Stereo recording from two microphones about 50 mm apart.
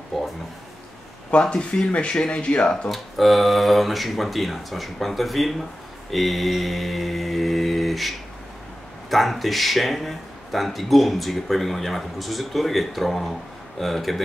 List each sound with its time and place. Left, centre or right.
0.1 s a sound: centre
1.4 s speech: centre
2.9 s a man's voice: centre
6.1 s mantra: centre
9.1 s a man's voice: centre